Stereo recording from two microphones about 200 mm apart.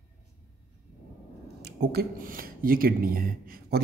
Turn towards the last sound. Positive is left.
turn(degrees=-45)  # may be behind; listen again after turning